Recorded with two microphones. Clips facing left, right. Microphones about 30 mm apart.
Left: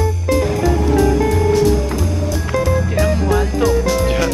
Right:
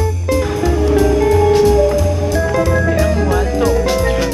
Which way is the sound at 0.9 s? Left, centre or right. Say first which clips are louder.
Right 4 dB; centre.